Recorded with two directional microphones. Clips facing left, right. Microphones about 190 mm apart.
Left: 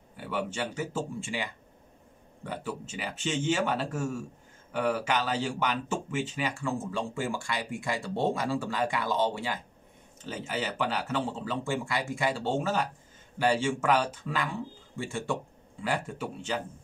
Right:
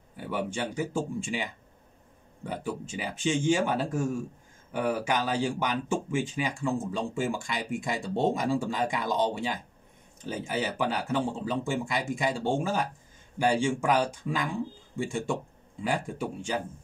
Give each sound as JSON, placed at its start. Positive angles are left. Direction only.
{"t": 0.3, "sound": "speech", "side_deg": -10}
{"t": 2.6, "sound": "speech", "side_deg": -10}